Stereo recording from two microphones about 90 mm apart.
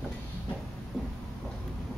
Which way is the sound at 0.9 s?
Centre (ahead or behind).